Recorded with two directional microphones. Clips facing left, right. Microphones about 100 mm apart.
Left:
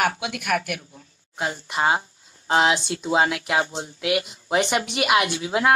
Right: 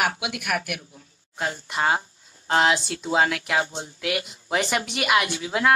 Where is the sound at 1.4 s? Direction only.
10° left (ahead or behind).